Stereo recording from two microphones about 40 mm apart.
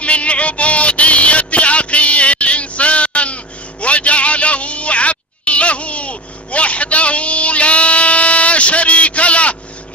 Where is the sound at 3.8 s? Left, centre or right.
Left.